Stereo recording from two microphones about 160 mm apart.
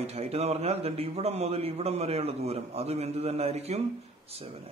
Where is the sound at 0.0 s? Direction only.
40° right (ahead or behind).